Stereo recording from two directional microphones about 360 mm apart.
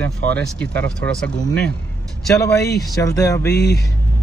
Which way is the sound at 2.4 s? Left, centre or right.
Centre.